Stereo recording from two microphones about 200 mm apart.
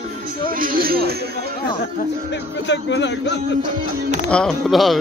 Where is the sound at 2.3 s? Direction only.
60° left (ahead or behind).